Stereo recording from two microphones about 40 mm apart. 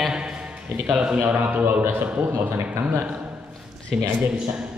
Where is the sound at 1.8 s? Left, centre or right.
Right.